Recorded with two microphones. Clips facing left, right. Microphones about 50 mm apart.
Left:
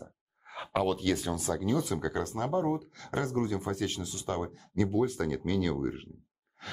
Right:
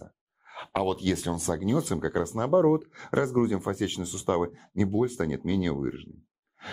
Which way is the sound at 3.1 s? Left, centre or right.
Centre.